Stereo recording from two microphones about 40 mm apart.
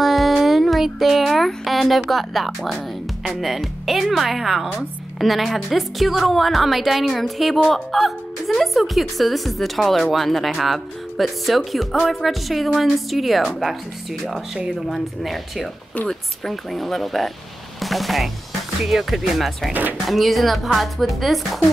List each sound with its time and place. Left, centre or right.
0.0 s a woman's voice: centre
19.7 s speech: right
20.1 s a woman's voice: centre